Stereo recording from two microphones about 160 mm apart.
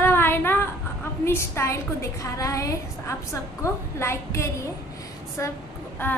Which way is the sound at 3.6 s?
15° left (ahead or behind).